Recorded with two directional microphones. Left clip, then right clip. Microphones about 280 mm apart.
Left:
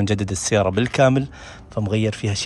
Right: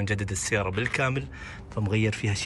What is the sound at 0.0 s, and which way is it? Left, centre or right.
Speech, centre.